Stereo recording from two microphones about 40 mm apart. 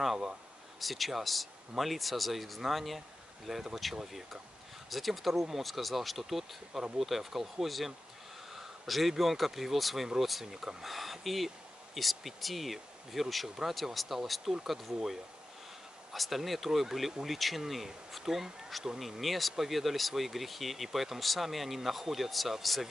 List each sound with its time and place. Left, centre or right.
0.0 s speech: centre